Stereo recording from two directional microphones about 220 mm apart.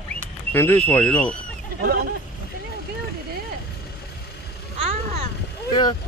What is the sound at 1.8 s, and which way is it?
Speech, 45° right (ahead or behind).